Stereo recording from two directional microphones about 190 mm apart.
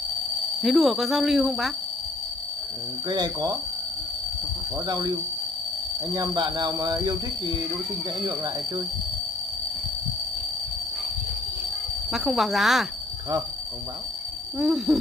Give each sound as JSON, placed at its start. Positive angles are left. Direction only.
{"t": 0.6, "sound": "speech", "side_deg": 0}
{"t": 3.1, "sound": "speech", "side_deg": -20}
{"t": 4.8, "sound": "speech", "side_deg": -20}
{"t": 6.1, "sound": "speech", "side_deg": -20}
{"t": 12.1, "sound": "speech", "side_deg": 0}
{"t": 14.6, "sound": "speech", "side_deg": 0}